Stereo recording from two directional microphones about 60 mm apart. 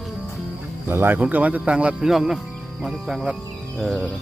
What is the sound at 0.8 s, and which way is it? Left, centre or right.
Speech, right.